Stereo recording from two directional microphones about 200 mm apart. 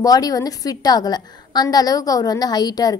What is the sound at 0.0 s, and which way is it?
A woman's voice, 20° left (ahead or behind).